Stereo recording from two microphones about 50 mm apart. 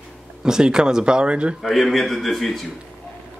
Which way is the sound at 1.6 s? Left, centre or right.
Centre.